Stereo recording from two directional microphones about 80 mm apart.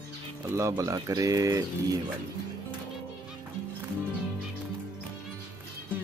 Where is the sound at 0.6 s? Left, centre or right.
Right.